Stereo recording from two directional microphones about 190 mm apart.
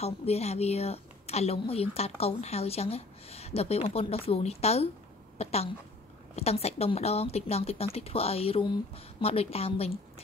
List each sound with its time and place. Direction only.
0.0 s a woman's voice: 35° left (ahead or behind)